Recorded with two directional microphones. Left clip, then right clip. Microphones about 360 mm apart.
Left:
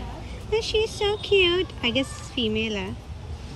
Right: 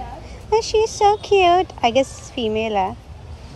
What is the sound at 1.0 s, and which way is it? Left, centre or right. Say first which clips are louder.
A woman's voice: right 7 dB; centre.